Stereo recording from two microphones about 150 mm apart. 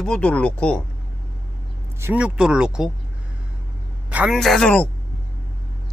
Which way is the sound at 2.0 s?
10° right (ahead or behind).